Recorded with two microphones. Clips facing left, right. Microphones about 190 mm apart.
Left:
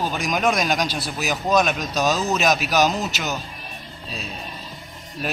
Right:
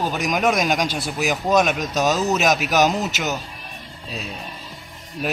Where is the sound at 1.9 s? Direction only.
20° right (ahead or behind).